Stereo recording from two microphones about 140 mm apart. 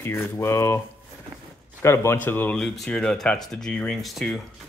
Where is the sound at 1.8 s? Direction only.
20° left (ahead or behind).